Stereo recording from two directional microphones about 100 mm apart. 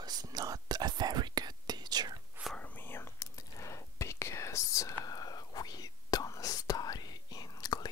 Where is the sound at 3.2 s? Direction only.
35° left (ahead or behind).